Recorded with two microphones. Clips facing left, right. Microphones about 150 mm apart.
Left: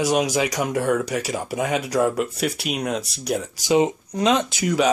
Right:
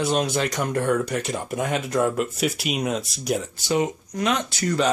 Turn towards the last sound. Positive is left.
turn(degrees=10)  # may be behind; listen again after turning